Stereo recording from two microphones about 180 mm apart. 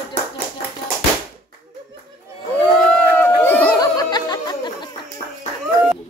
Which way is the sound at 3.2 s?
10° left (ahead or behind).